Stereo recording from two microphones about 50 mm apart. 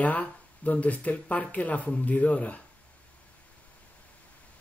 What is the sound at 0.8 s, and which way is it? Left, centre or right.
Speech, left.